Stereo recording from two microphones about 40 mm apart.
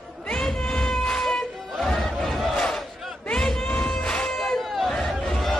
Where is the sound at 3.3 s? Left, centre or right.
Centre.